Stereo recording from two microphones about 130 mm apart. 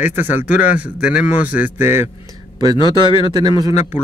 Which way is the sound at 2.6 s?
35° right (ahead or behind).